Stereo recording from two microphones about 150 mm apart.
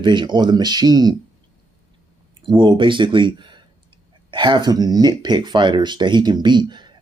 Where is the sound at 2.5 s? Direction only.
30° right (ahead or behind).